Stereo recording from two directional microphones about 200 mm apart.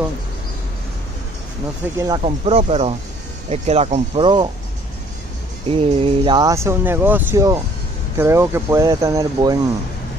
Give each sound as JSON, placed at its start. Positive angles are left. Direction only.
{"t": 2.0, "sound": "speech", "side_deg": -20}
{"t": 5.7, "sound": "speech", "side_deg": -25}